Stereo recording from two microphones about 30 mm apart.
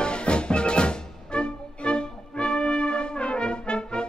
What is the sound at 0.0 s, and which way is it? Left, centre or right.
Music, left.